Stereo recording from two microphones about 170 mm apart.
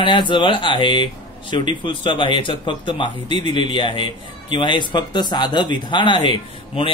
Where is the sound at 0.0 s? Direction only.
30° left (ahead or behind).